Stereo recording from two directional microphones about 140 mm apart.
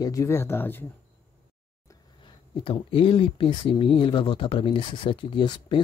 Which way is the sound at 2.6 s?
40° left (ahead or behind).